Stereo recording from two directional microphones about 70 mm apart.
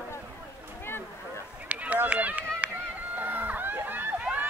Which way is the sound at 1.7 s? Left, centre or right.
Right.